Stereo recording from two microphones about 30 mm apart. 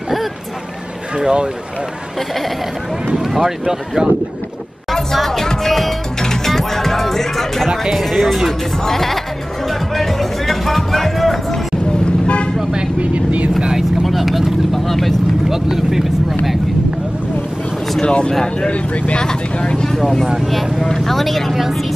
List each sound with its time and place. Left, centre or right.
1.1 s speech: right
3.2 s speech: centre
5.1 s music: centre
8.0 s speech: centre
9.7 s music: centre
12.0 s vehicle: left
13.0 s speech: right
14.0 s speech: centre
14.7 s speech: centre
15.5 s speech: centre
18.0 s speech: left
18.7 s speech: left
20.3 s speech: centre